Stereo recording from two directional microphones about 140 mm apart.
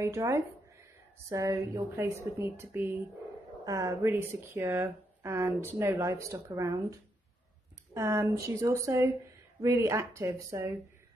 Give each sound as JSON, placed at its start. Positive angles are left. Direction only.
{"t": 0.0, "sound": "speech", "side_deg": -20}